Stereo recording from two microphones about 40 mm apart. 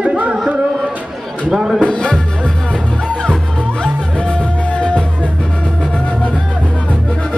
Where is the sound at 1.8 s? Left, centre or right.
Left.